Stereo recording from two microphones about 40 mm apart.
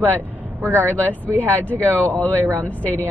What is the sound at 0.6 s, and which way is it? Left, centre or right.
Speech, right.